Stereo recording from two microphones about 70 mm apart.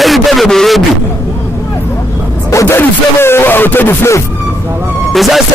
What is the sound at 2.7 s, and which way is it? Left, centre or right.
Speech, left.